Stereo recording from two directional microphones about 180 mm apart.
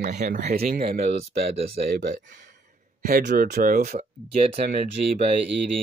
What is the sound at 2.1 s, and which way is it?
Speech, 45° right (ahead or behind).